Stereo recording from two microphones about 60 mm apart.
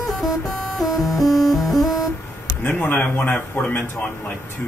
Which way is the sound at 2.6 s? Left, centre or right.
Left.